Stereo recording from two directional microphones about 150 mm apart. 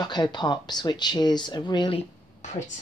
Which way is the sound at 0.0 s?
30° left (ahead or behind).